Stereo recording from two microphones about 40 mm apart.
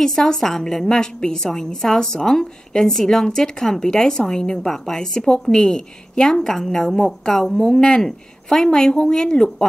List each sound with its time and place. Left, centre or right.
0.0 s a woman's voice: centre